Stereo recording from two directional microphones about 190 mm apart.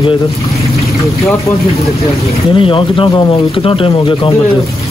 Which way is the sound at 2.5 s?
25° left (ahead or behind).